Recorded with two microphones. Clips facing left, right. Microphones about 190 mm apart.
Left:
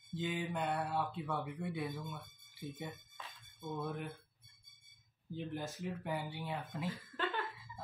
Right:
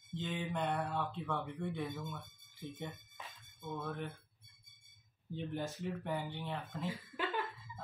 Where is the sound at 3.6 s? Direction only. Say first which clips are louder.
Left 1 dB; 15° left (ahead or behind).